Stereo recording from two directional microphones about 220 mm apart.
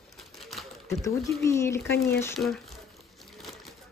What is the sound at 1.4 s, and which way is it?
Speech, 15° left (ahead or behind).